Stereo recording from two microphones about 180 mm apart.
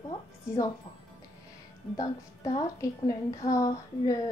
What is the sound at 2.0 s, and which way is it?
A woman's voice, 20° left (ahead or behind).